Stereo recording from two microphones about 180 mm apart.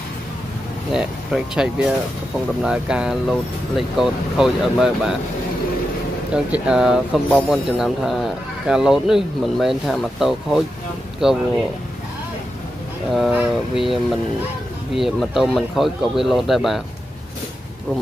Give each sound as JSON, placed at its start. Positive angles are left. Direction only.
{"t": 0.9, "sound": "speech", "side_deg": -5}
{"t": 6.3, "sound": "speech", "side_deg": -5}
{"t": 13.1, "sound": "speech", "side_deg": -5}
{"t": 15.0, "sound": "speech", "side_deg": 0}